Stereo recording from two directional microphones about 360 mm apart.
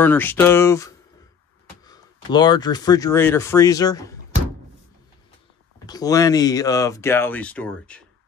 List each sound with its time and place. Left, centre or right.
0.0 s speech: centre
5.9 s speech: centre